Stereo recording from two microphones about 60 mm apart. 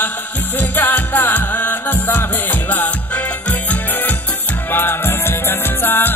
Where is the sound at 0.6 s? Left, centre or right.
Left.